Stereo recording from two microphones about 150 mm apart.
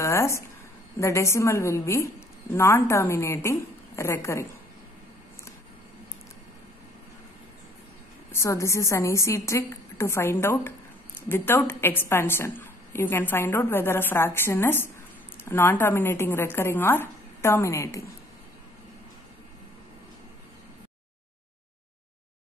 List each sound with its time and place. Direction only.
0.0 s a sound: 20° left (ahead or behind)
0.9 s a woman's voice: 20° left (ahead or behind)
8.3 s a woman's voice: 20° left (ahead or behind)